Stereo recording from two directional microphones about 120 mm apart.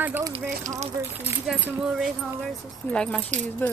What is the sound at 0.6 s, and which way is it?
Speech, 65° right (ahead or behind).